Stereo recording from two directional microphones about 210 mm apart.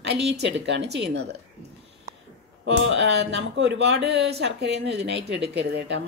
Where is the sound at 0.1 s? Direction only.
55° right (ahead or behind).